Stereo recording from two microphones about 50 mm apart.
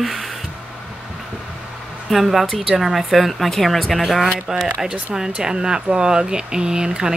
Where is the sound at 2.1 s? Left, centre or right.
Centre.